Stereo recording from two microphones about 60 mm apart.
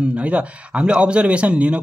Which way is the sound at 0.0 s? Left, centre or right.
Right.